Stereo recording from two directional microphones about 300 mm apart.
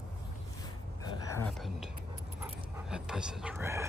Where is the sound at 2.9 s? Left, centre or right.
Centre.